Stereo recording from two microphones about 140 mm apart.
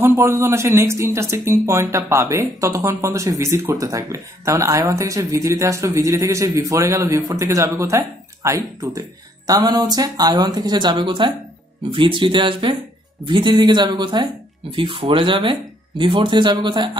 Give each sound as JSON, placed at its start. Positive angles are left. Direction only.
{"t": 0.0, "sound": "speech", "side_deg": -15}